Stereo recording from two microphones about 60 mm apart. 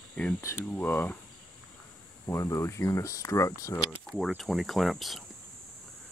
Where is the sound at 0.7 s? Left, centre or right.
Left.